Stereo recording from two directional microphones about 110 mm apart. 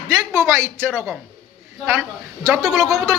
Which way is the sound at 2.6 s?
Centre (ahead or behind).